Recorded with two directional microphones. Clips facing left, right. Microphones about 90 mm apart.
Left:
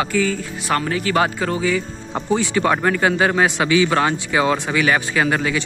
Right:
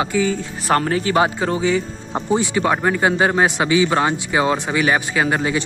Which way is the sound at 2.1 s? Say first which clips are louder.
Right 1 dB; 15° right (ahead or behind).